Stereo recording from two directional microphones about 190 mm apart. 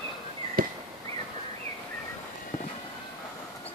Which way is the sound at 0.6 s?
50° right (ahead or behind).